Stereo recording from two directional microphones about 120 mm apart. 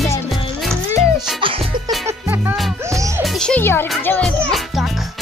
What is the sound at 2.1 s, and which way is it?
Music, 20° right (ahead or behind).